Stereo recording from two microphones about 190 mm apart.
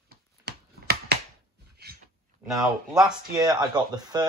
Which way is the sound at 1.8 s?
60° right (ahead or behind).